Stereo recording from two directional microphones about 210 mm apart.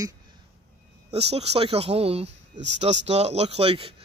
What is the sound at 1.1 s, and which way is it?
Speech, 30° right (ahead or behind).